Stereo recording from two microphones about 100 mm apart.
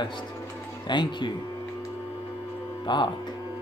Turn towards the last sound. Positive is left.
turn(degrees=50)  # may be behind; listen again after turning